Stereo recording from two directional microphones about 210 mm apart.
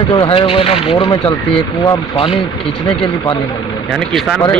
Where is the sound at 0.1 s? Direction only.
25° left (ahead or behind).